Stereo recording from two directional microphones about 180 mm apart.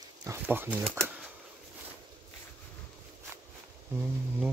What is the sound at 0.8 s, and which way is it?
Speech, 5° left (ahead or behind).